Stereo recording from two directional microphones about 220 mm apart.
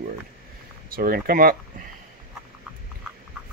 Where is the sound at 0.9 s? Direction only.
40° right (ahead or behind).